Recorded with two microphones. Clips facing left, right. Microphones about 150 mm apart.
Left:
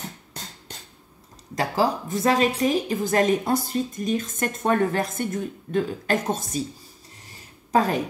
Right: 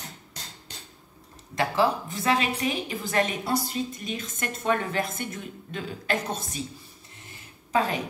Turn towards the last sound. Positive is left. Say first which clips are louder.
# left 4 dB
turn(degrees=40)  # may be behind; listen again after turning